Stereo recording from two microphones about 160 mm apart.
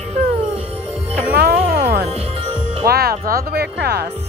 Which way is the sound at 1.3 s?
90° right.